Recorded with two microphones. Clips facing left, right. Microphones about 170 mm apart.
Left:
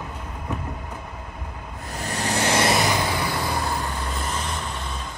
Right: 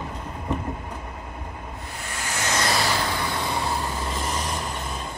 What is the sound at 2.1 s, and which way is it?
Vehicle, 35° left (ahead or behind).